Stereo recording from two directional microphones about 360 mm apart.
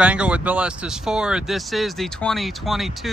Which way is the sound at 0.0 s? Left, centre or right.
Centre.